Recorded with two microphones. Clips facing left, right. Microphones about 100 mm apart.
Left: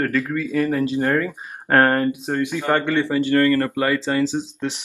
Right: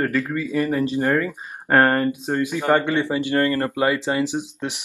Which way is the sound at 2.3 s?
15° right (ahead or behind).